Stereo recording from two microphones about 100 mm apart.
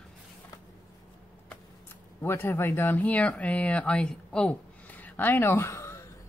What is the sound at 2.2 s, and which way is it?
Speech, 25° left (ahead or behind).